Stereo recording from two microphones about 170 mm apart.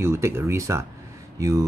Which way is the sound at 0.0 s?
15° right (ahead or behind).